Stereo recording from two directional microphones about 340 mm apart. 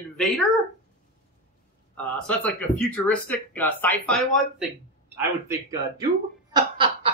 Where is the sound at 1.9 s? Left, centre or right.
Centre.